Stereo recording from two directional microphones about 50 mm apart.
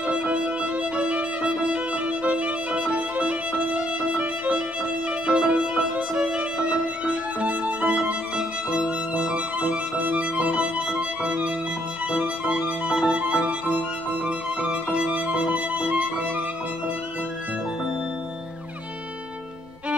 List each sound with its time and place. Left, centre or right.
0.0 s violin: right
10.4 s music: right
12.1 s violin: right